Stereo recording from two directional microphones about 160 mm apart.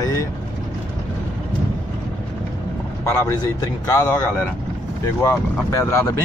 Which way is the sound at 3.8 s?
20° left (ahead or behind).